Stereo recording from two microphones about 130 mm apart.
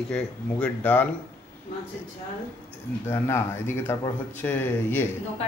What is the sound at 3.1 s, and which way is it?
Speech, 20° left (ahead or behind).